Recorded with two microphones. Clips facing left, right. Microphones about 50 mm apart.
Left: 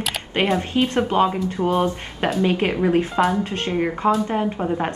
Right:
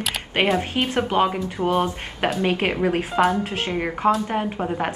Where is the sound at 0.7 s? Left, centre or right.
Right.